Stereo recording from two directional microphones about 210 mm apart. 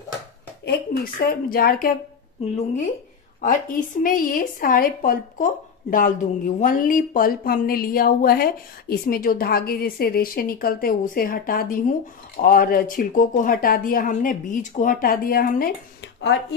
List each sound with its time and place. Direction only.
0.7 s a woman's voice: 45° left (ahead or behind)
2.4 s a woman's voice: 30° left (ahead or behind)